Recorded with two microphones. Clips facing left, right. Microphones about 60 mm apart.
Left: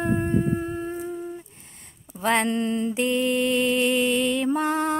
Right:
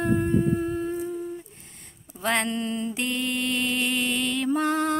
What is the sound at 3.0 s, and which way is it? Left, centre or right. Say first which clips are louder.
Music: left 6 dB; centre.